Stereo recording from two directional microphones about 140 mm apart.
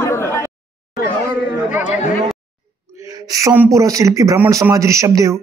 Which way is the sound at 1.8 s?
10° right (ahead or behind).